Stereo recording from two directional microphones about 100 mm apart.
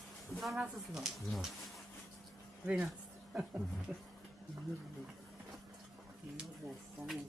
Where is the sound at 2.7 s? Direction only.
10° right (ahead or behind).